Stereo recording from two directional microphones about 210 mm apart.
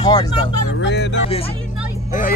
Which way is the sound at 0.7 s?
60° left (ahead or behind).